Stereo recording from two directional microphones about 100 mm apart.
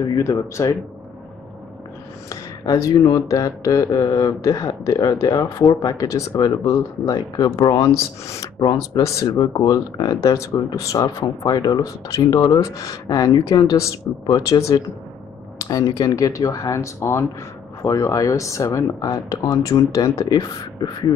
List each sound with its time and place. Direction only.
0.0 s speech: 35° left (ahead or behind)
2.2 s speech: 35° left (ahead or behind)
8.0 s speech: 30° left (ahead or behind)
8.5 s speech: 45° left (ahead or behind)